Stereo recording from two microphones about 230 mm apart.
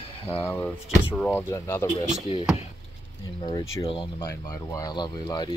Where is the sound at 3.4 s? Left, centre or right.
Centre.